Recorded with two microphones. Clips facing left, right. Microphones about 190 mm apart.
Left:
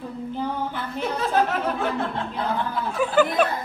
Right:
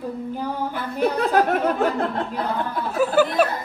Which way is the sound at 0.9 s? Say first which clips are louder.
Right 4 dB; 55° right (ahead or behind).